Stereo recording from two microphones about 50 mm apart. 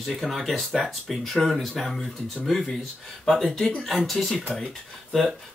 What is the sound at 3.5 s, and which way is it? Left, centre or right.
Speech, centre.